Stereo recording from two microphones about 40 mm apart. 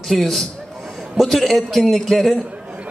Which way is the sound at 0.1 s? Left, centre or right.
Centre.